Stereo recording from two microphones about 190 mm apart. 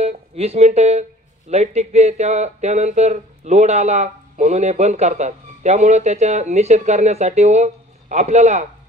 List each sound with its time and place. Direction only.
0.0 s speech: 35° right (ahead or behind)